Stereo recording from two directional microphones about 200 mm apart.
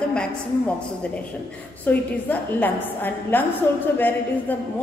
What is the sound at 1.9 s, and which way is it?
A man's voice, 10° left (ahead or behind).